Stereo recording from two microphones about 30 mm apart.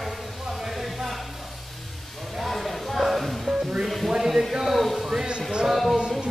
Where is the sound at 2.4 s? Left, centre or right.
Centre.